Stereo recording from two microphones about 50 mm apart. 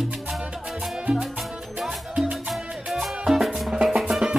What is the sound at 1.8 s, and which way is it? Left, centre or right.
Music, centre.